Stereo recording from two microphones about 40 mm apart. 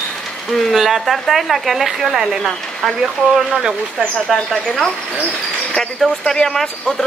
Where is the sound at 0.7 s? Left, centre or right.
Centre.